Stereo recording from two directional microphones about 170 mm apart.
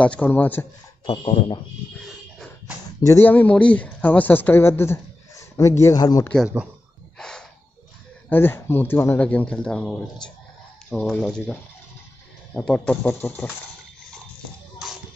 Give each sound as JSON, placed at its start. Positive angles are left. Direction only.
{"t": 0.0, "sound": "speech", "side_deg": 10}
{"t": 1.0, "sound": "speech", "side_deg": 30}
{"t": 3.0, "sound": "speech", "side_deg": 15}
{"t": 6.4, "sound": "speech", "side_deg": -5}
{"t": 7.2, "sound": "a sound", "side_deg": 5}
{"t": 8.3, "sound": "speech", "side_deg": 10}
{"t": 12.6, "sound": "speech", "side_deg": 5}